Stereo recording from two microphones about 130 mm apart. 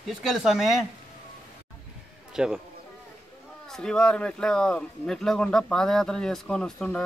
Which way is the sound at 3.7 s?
5° left (ahead or behind).